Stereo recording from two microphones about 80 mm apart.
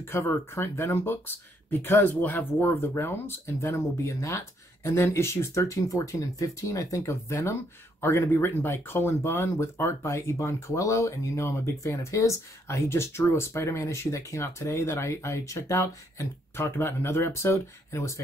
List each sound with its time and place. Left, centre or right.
0.0 s speech: left